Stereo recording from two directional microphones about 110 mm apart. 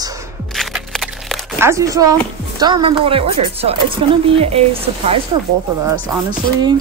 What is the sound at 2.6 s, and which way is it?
Speech, 45° right (ahead or behind).